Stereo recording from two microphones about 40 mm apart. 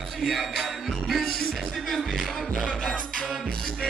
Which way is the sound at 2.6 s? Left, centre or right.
Left.